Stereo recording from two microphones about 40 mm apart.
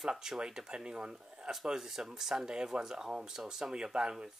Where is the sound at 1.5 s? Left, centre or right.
Centre.